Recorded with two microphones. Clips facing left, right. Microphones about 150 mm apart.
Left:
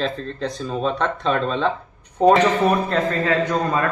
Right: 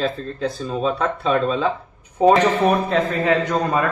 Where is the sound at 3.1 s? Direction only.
15° right (ahead or behind).